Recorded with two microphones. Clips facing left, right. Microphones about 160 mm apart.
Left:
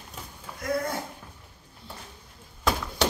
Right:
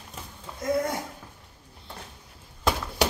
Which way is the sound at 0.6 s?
20° right (ahead or behind).